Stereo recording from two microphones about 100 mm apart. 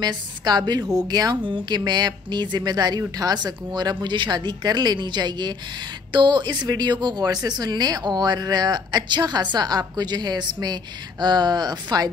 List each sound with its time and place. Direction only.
0.0 s speech: 45° right (ahead or behind)